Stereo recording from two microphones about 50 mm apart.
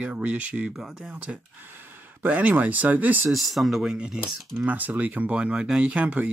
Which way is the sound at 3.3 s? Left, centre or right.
Centre.